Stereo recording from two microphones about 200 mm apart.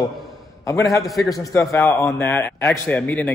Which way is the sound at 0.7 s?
15° left (ahead or behind).